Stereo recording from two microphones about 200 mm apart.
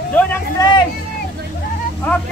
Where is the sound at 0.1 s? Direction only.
10° left (ahead or behind).